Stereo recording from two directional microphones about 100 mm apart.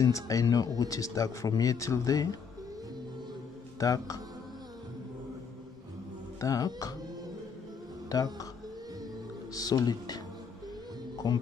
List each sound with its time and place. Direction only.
0.0 s speech: 35° left (ahead or behind)
3.8 s speech: 35° left (ahead or behind)
6.4 s speech: 35° left (ahead or behind)
8.1 s speech: 35° left (ahead or behind)
9.5 s speech: 35° left (ahead or behind)
11.2 s speech: 50° left (ahead or behind)